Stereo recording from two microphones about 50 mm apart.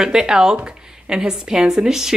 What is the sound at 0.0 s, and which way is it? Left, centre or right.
Speech, centre.